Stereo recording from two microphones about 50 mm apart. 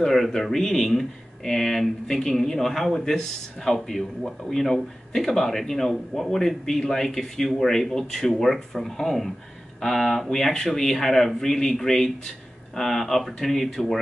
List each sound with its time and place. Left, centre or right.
0.0 s speech: centre